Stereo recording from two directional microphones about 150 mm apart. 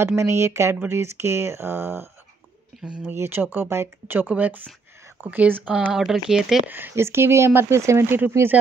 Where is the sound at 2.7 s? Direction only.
Centre (ahead or behind).